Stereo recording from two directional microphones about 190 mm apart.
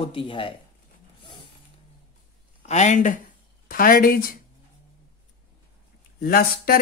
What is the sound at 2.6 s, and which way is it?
Speech, 35° left (ahead or behind).